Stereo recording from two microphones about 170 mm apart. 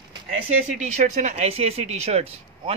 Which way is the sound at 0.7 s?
45° right (ahead or behind).